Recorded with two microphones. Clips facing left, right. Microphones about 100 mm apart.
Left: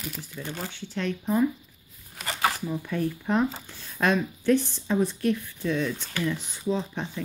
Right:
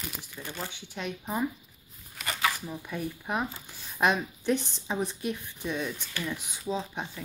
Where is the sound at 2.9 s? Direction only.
10° right (ahead or behind).